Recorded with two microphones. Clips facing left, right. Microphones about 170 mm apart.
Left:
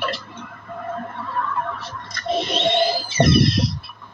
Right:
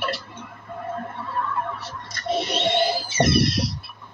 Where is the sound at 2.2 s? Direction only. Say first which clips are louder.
Left 2 dB; 20° left (ahead or behind).